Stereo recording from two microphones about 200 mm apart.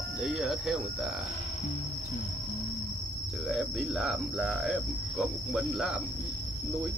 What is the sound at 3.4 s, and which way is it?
Cricket, centre (ahead or behind).